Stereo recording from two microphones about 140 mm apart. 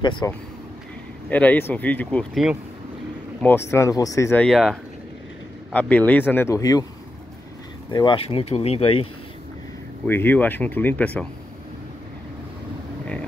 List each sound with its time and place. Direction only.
0.0 s speech: 35° left (ahead or behind)
1.3 s speech: 10° left (ahead or behind)
3.4 s speech: 20° left (ahead or behind)
4.3 s speech: 5° left (ahead or behind); by 6.9 s 25° left (ahead or behind)
7.9 s speech: 35° left (ahead or behind)
10.0 s speech: 15° left (ahead or behind)